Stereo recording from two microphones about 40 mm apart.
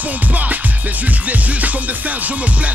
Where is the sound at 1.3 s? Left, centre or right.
Right.